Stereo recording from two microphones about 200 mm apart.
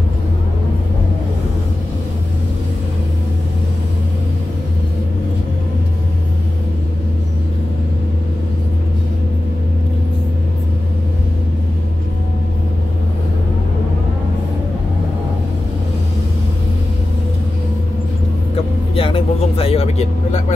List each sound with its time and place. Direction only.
18.9 s vehicle: 25° left (ahead or behind)